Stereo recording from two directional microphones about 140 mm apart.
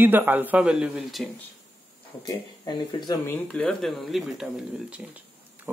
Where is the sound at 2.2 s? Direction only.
30° left (ahead or behind).